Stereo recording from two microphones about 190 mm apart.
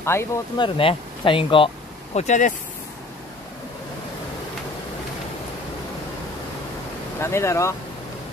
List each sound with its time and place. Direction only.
0.0 s speech: 15° left (ahead or behind)
0.6 s speech: 30° left (ahead or behind)
2.1 s speech: 40° left (ahead or behind)
7.2 s speech: 15° left (ahead or behind)